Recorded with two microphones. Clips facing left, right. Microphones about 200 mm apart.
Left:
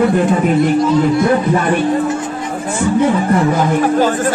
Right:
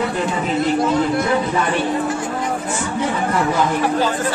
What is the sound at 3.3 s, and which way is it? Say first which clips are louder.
Speech: left 5 dB; 45° left (ahead or behind).